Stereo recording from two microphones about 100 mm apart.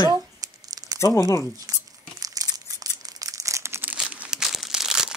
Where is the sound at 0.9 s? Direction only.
30° left (ahead or behind).